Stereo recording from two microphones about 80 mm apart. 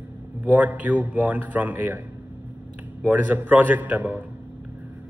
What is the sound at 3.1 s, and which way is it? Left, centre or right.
A man's voice, right.